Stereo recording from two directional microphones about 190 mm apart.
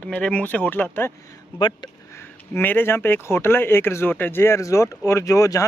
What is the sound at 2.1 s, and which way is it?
Speech, 10° left (ahead or behind).